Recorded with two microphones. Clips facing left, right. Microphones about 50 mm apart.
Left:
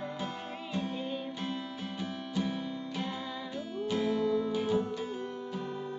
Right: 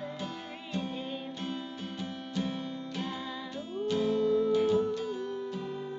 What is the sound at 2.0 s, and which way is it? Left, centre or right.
Music, centre.